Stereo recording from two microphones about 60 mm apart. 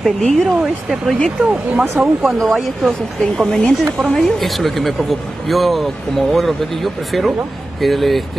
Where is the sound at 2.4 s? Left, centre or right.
Centre.